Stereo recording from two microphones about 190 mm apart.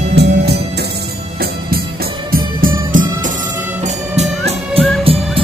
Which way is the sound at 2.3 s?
45° right (ahead or behind).